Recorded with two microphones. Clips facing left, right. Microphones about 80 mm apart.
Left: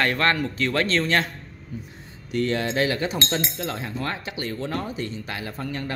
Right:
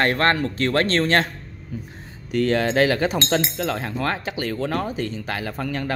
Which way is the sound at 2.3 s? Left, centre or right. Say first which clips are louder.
Right 4 dB; right.